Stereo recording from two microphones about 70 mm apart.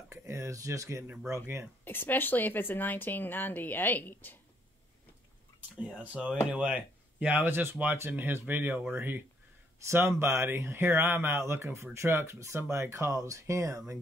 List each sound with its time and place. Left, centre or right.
0.1 s speech: right
1.9 s a woman's voice: left
5.9 s speech: centre; by 13.9 s right